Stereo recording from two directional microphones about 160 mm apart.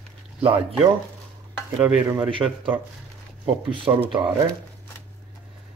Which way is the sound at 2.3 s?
30° right (ahead or behind).